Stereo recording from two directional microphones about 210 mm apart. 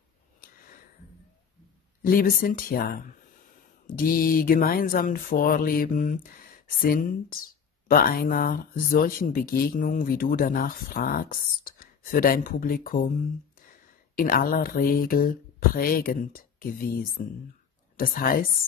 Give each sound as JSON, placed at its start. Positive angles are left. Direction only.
{"t": 2.0, "sound": "speech", "side_deg": 45}
{"t": 14.1, "sound": "speech", "side_deg": 40}